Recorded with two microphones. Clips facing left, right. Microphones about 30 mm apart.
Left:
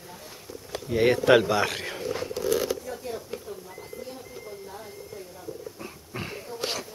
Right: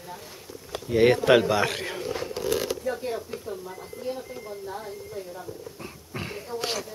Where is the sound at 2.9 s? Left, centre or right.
Right.